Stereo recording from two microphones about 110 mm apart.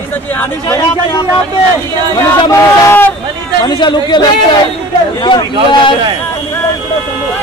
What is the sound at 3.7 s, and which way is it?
Speech, 45° left (ahead or behind).